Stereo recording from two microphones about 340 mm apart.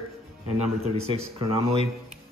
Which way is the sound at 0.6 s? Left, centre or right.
Centre.